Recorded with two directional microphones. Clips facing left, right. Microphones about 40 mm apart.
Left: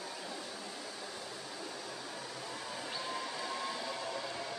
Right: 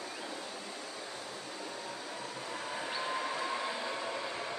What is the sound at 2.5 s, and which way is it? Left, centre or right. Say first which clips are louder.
Train: right 5 dB; right.